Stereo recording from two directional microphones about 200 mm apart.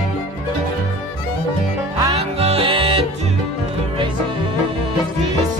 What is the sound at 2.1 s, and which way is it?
Music, 30° right (ahead or behind).